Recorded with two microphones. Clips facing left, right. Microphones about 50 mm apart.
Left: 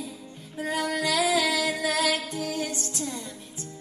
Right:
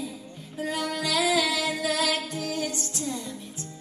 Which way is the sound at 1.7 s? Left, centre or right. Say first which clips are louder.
Left 1 dB; left.